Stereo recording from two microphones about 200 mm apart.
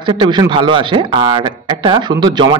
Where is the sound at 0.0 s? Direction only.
25° right (ahead or behind).